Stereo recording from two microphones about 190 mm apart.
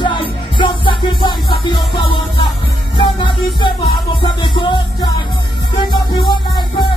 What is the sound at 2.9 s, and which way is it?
Music, 25° left (ahead or behind).